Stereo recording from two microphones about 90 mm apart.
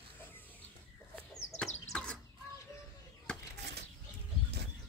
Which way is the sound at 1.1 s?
10° left (ahead or behind).